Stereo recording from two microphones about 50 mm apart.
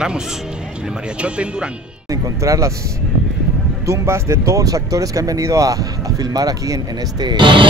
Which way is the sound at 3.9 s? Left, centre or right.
Right.